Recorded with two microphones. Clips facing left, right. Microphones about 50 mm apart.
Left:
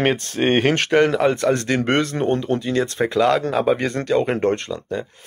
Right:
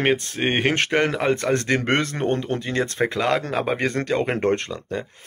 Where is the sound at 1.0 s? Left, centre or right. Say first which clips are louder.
Left 3 dB; right.